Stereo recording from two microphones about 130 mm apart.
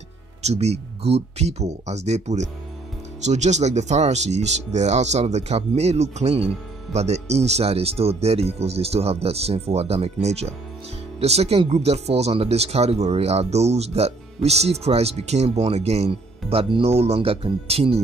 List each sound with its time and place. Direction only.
0.4 s speech: 55° right (ahead or behind)